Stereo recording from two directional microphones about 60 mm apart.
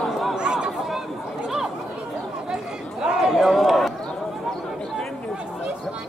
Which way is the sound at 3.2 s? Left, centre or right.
Centre.